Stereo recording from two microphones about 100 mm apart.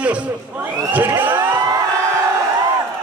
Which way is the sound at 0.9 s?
20° right (ahead or behind).